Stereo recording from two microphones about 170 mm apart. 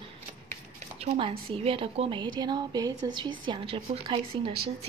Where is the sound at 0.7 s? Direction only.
40° right (ahead or behind).